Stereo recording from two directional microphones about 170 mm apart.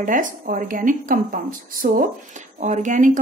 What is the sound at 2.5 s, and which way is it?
Speech, 45° right (ahead or behind).